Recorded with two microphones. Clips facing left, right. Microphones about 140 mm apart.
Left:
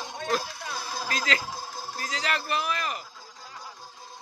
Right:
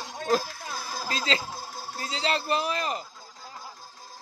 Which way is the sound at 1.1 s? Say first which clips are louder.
Right 1 dB; 25° right (ahead or behind).